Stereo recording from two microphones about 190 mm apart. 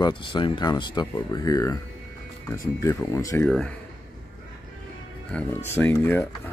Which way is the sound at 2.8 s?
15° left (ahead or behind).